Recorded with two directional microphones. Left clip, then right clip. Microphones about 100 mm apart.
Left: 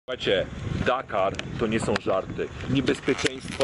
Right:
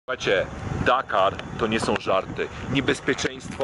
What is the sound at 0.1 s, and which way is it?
Speech, 35° right (ahead or behind).